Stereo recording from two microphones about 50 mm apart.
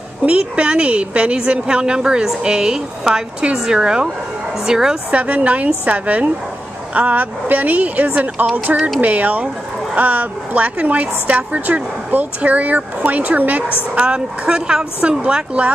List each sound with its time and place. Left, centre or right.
0.2 s a woman's voice: right
5.1 s a woman's voice: right